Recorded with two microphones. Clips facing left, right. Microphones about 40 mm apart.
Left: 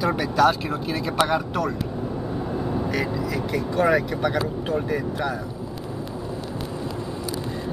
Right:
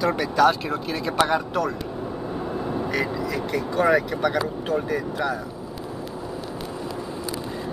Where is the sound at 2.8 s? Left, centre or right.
Centre.